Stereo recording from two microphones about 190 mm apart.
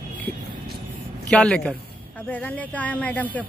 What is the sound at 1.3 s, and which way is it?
Speech, 5° left (ahead or behind).